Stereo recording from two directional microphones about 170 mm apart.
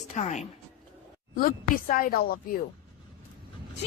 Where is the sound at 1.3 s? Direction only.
55° left (ahead or behind).